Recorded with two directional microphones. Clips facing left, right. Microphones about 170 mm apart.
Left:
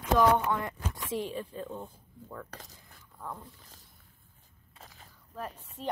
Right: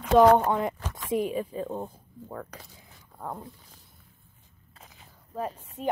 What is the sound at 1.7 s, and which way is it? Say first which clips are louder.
Speech: right 7 dB; 40° right (ahead or behind).